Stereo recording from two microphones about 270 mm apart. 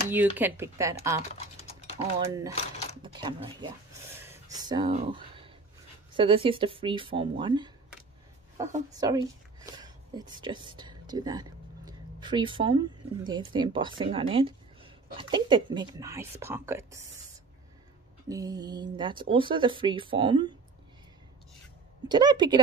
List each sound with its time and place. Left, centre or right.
0.1 s speech: centre
2.5 s a sound: left
3.0 s a sound: centre
6.1 s speech: centre
8.9 s speech: centre
9.8 s a sound: centre
13.2 s speech: centre
18.3 s speech: centre
22.0 s speech: centre